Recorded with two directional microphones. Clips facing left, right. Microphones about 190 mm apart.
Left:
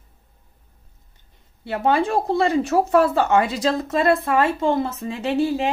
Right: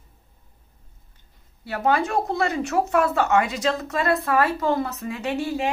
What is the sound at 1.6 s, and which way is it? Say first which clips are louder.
Speech: left 2 dB; 30° left (ahead or behind).